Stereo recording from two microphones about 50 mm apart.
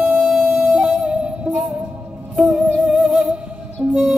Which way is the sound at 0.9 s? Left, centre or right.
Centre.